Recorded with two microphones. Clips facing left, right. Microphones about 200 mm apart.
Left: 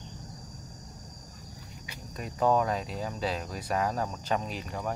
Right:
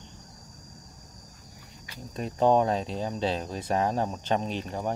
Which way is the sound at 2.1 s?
30° right (ahead or behind).